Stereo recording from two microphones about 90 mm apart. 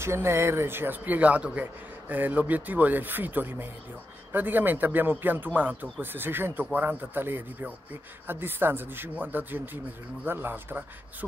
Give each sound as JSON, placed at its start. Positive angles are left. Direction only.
{"t": 0.0, "sound": "speech", "side_deg": -30}